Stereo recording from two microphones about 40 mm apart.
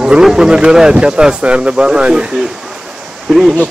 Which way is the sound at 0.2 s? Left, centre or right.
Centre.